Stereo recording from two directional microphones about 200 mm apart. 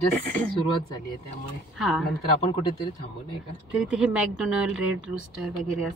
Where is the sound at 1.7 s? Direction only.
Centre (ahead or behind).